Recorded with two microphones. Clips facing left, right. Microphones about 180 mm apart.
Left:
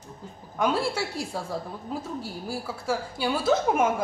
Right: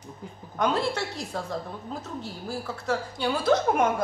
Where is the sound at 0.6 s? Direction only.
10° left (ahead or behind).